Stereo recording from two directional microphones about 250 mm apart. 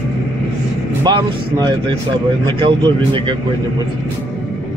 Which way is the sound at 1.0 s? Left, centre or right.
Centre.